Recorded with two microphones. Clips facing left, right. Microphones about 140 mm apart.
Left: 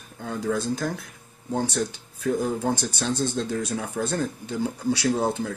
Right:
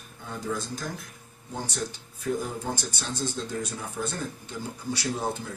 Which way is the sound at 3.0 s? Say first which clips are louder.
Left 7 dB; 65° left (ahead or behind).